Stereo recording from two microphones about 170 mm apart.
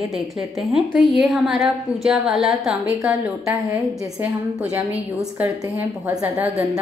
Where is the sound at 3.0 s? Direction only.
20° right (ahead or behind).